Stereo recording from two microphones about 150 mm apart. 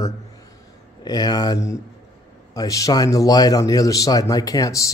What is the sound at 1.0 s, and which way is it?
Speech, 25° left (ahead or behind).